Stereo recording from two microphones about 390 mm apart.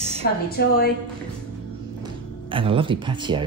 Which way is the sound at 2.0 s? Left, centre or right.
Centre.